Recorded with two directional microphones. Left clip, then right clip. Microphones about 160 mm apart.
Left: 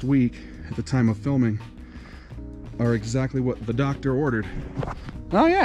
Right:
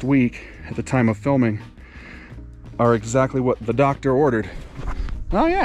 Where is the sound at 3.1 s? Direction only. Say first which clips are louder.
Right 8 dB; 45° right (ahead or behind).